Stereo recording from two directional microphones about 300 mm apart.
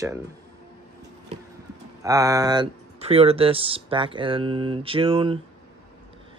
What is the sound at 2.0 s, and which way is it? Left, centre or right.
Speech, centre.